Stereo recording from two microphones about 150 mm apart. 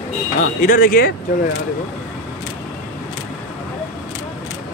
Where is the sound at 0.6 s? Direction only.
70° left (ahead or behind).